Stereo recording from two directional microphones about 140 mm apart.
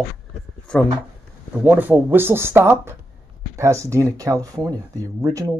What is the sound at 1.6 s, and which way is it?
Speech, 10° right (ahead or behind).